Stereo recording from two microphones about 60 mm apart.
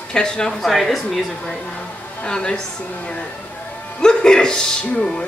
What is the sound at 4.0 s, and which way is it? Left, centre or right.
A man's voice, centre.